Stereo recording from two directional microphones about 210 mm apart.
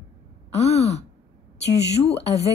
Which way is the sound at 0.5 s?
30° left (ahead or behind).